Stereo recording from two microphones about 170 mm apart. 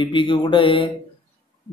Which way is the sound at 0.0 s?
30° left (ahead or behind).